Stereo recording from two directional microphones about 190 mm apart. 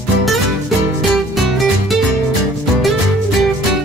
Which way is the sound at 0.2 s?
Centre (ahead or behind).